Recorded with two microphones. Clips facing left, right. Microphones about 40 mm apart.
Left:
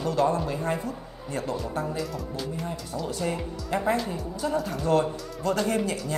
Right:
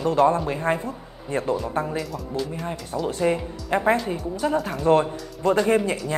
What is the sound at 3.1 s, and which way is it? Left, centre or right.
A man's voice, right.